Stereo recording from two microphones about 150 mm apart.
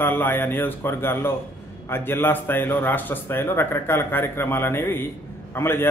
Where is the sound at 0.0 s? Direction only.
15° left (ahead or behind).